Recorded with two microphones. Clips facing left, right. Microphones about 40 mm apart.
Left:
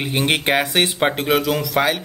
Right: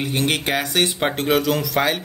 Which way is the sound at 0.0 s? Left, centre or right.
Left.